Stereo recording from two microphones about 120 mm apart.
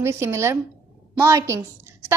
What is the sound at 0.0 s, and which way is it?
A woman's voice, 25° right (ahead or behind).